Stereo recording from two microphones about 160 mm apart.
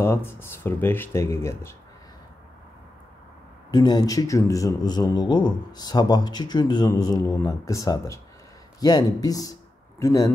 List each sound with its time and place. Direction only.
0.0 s speech: 15° left (ahead or behind)
3.7 s a man's voice: 25° left (ahead or behind)